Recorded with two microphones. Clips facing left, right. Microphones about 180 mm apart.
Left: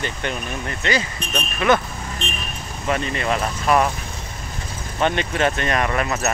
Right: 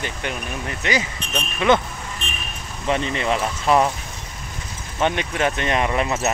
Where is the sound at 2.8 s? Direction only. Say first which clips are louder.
Right 1 dB; 20° right (ahead or behind).